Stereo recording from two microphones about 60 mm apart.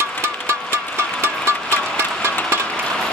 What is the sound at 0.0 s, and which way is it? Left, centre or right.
Vehicle, right.